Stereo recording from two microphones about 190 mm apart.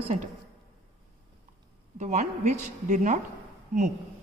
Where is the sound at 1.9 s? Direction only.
35° right (ahead or behind).